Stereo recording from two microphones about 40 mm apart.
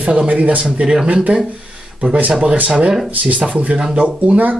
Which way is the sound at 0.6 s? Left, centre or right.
Right.